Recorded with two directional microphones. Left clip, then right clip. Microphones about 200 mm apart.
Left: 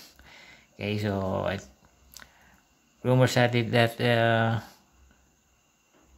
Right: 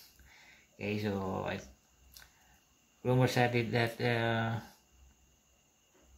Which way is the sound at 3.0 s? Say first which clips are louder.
Left 7 dB; 40° left (ahead or behind).